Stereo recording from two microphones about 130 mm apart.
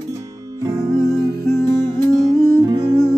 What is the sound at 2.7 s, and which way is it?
Music, 35° right (ahead or behind).